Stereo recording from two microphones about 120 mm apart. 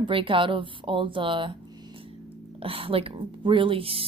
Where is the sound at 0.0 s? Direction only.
45° right (ahead or behind).